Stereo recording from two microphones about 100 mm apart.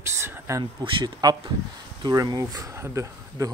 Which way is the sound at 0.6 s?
45° right (ahead or behind).